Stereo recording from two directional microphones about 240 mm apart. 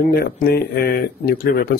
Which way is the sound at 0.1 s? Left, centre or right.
Left.